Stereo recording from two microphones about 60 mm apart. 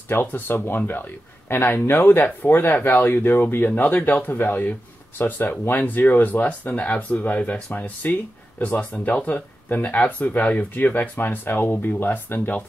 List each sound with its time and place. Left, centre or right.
0.1 s speech: left